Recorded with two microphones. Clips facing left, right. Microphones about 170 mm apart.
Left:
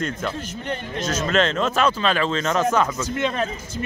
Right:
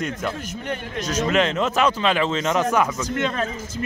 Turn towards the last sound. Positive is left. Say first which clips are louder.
# left 1 dB
turn(degrees=0)  # may be behind; listen again after turning